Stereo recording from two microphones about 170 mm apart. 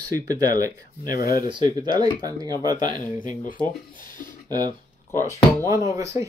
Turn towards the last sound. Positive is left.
turn(degrees=-20)  # may be behind; listen again after turning